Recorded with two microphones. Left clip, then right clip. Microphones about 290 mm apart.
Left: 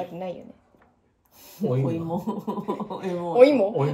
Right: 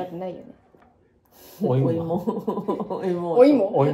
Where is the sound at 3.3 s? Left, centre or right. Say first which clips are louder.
Even; left.